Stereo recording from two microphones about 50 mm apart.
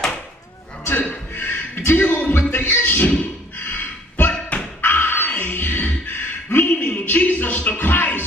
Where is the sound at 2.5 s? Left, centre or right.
Left.